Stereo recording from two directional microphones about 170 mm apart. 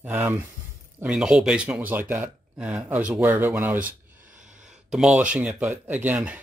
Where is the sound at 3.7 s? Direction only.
50° right (ahead or behind).